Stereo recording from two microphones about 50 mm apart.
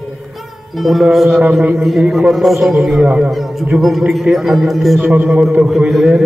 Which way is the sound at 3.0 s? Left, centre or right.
Centre.